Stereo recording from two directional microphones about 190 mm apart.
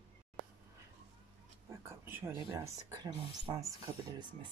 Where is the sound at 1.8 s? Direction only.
15° right (ahead or behind).